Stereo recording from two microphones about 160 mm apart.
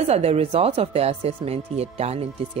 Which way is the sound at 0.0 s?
40° right (ahead or behind).